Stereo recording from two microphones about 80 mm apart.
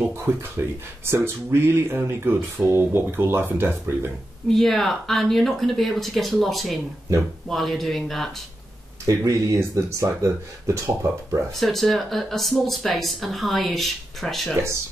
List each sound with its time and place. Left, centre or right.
0.2 s speech: right
4.5 s speech: centre
9.2 s speech: right
11.5 s speech: centre